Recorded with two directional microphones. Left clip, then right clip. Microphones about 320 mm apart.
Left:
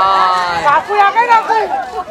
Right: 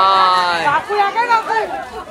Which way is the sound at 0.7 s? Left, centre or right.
Left.